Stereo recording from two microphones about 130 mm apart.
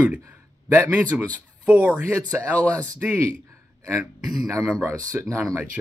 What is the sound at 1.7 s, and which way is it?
Speech, 10° right (ahead or behind).